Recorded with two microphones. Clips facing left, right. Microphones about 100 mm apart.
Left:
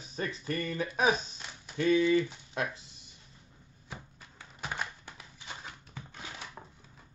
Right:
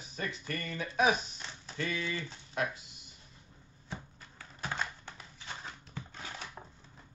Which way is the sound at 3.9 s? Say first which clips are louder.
Right 2 dB; 15° left (ahead or behind).